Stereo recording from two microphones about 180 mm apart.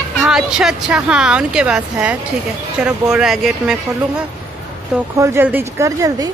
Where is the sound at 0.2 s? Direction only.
5° right (ahead or behind).